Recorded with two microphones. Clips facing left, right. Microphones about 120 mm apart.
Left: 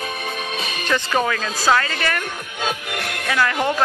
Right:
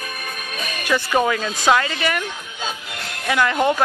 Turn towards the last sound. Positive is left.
turn(degrees=-15)  # may be behind; listen again after turning